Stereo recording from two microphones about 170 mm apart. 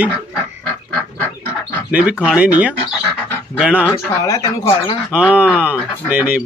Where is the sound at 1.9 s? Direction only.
5° right (ahead or behind).